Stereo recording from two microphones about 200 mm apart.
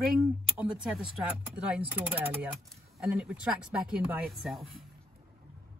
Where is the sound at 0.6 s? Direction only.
5° right (ahead or behind).